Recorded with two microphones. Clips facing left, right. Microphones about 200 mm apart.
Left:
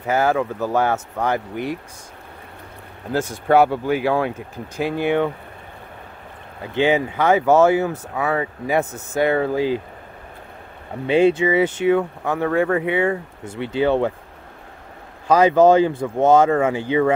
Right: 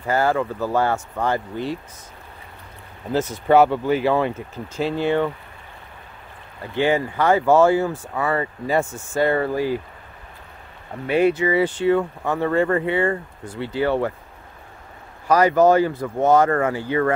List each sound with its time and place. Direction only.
0.0 s speech: 15° left (ahead or behind)
3.1 s speech: 10° left (ahead or behind)
6.7 s speech: 20° left (ahead or behind)
8.1 s speech: 5° left (ahead or behind)
8.6 s speech: 20° left (ahead or behind)
11.1 s speech: 25° left (ahead or behind)
12.0 s speech: 5° left (ahead or behind)
13.4 s speech: 25° left (ahead or behind)
15.2 s speech: 25° left (ahead or behind)
16.4 s speech: 10° left (ahead or behind)